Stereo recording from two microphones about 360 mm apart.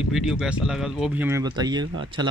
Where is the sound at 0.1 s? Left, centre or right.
Centre.